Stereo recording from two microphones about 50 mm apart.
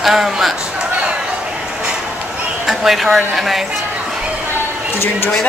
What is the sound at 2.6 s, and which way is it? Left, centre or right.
Speech, centre.